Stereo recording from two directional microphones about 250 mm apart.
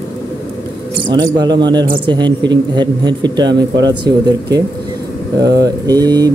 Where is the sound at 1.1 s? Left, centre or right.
Centre.